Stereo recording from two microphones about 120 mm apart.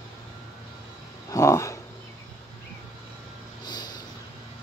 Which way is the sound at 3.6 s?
35° left (ahead or behind).